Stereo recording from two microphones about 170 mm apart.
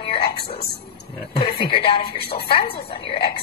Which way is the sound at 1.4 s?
30° left (ahead or behind).